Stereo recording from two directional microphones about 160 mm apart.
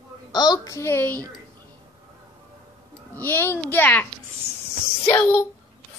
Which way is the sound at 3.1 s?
15° left (ahead or behind).